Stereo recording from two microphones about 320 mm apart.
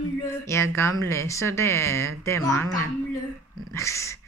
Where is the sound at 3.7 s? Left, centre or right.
Centre.